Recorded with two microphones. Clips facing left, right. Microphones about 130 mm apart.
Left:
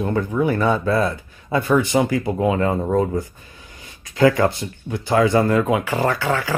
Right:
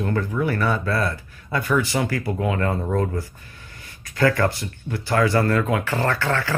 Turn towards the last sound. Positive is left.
turn(degrees=10)  # may be behind; listen again after turning